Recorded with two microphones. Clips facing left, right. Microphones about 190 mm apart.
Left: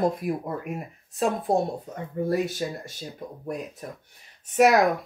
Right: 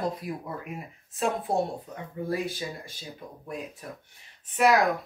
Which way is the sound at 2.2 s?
45° left (ahead or behind).